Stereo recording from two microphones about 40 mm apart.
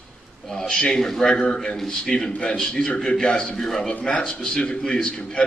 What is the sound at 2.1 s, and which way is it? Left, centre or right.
A man's voice, left.